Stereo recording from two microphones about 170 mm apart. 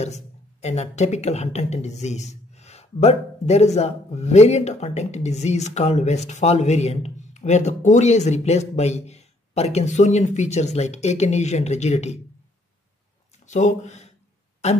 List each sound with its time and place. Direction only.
0.0 s speech: 40° left (ahead or behind)
13.5 s speech: 45° left (ahead or behind)